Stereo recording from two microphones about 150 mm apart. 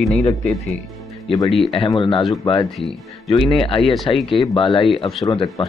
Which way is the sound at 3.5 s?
35° left (ahead or behind).